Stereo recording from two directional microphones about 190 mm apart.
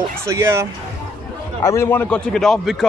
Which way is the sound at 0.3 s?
15° right (ahead or behind).